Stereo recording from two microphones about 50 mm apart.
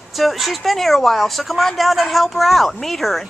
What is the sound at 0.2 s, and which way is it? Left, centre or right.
A woman's voice, centre.